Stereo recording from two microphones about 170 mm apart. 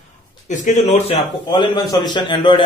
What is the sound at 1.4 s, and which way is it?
A man's voice, 25° left (ahead or behind).